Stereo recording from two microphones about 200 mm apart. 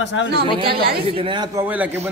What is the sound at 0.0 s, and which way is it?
Speech, 65° left (ahead or behind).